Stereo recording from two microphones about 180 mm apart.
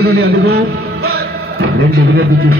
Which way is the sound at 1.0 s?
60° right (ahead or behind).